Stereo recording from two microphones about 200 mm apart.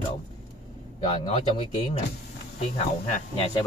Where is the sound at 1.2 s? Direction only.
30° left (ahead or behind).